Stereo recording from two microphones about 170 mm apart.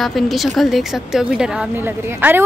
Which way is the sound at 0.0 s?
Centre (ahead or behind).